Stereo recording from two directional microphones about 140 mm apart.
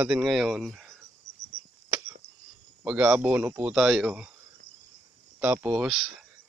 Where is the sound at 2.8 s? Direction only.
5° right (ahead or behind).